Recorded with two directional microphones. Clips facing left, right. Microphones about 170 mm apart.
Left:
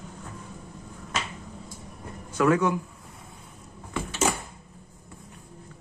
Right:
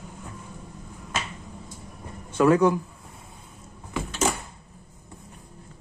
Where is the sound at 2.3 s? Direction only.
30° right (ahead or behind).